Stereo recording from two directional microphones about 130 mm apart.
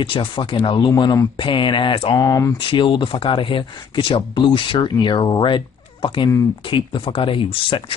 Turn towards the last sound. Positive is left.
turn(degrees=40)  # may be behind; listen again after turning